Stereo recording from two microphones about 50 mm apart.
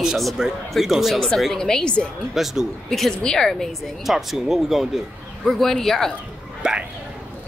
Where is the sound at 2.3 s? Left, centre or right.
Centre.